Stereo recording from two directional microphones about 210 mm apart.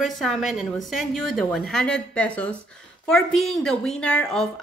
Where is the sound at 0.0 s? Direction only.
Centre (ahead or behind).